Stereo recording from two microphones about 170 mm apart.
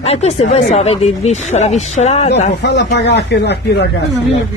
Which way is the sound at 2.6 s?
85° left.